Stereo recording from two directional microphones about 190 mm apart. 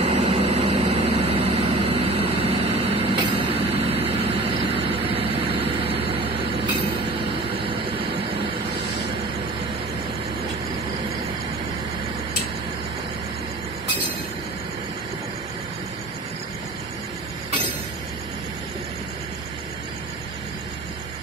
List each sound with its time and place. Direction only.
0.0 s vehicle: 35° right (ahead or behind)